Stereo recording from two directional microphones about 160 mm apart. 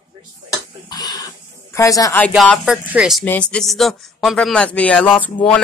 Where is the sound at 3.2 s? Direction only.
10° left (ahead or behind).